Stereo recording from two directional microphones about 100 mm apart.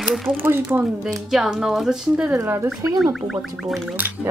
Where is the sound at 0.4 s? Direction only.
20° right (ahead or behind).